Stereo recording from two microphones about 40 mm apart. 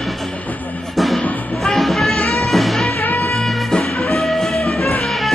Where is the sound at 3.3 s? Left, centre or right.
Centre.